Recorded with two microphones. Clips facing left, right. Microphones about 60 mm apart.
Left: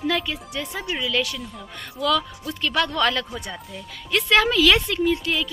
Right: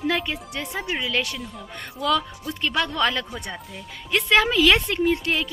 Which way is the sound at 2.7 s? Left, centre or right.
Centre.